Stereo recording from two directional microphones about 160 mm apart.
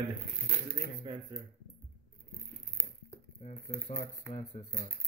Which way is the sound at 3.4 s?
50° left (ahead or behind).